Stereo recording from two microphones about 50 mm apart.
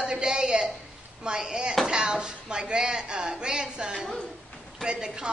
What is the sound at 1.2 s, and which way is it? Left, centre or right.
A woman's voice, centre.